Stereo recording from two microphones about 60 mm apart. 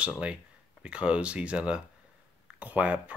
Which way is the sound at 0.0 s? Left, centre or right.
Centre.